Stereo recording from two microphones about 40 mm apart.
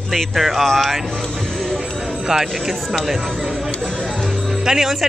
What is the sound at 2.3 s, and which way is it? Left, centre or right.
Speech, centre.